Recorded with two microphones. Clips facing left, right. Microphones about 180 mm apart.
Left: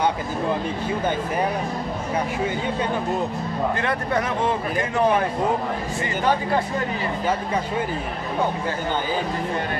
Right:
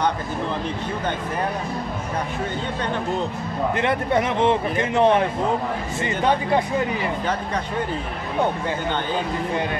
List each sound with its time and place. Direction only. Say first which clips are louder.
3.8 s speech: right 3 dB; 20° right (ahead or behind)